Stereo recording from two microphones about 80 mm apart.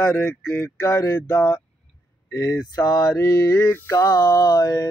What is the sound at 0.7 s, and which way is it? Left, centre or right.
Mantra, left.